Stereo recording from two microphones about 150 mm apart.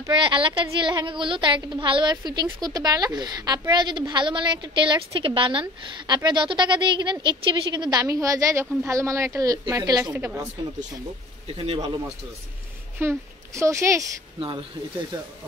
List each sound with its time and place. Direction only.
0.1 s a woman's voice: 35° right (ahead or behind); by 10.5 s 15° right (ahead or behind)
11.4 s speech: 40° right (ahead or behind)
13.0 s a woman's voice: 15° right (ahead or behind)